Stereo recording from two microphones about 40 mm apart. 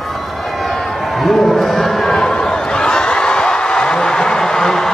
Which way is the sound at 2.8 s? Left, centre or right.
Left.